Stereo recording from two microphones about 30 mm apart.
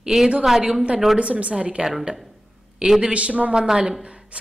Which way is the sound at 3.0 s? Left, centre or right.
Right.